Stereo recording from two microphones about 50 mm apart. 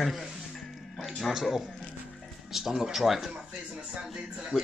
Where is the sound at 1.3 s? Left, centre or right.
Centre.